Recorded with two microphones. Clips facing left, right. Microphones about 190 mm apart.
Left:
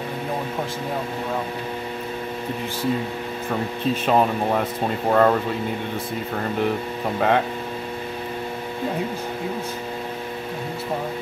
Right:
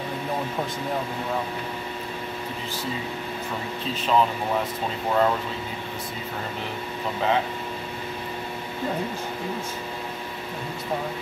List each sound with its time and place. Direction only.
3.9 s speech: 50° left (ahead or behind)
7.2 s speech: 60° left (ahead or behind)